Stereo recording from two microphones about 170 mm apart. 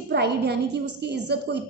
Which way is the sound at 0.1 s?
75° right (ahead or behind).